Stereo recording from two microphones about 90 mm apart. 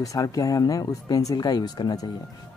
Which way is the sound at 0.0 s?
40° left (ahead or behind).